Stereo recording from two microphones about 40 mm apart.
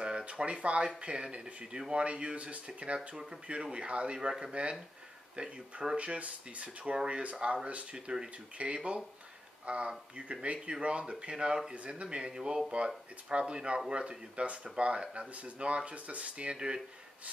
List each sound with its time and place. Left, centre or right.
0.0 s a sound: right
1.0 s speech: right
11.7 s speech: right
12.7 s speech: right
16.5 s speech: right